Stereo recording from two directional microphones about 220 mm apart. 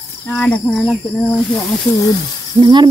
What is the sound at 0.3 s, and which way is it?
Cricket, 5° left (ahead or behind).